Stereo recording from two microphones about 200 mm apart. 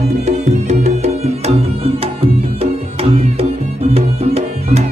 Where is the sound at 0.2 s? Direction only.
35° right (ahead or behind).